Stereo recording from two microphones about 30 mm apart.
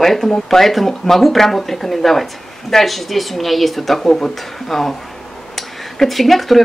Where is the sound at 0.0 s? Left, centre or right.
Centre.